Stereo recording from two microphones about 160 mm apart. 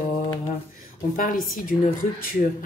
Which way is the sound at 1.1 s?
60° left (ahead or behind).